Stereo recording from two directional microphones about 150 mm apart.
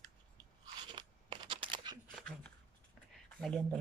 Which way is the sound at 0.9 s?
35° right (ahead or behind).